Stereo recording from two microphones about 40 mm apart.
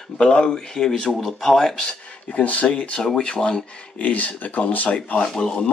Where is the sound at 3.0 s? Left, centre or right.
Centre.